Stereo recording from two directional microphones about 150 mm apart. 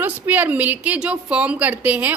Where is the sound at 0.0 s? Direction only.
10° right (ahead or behind).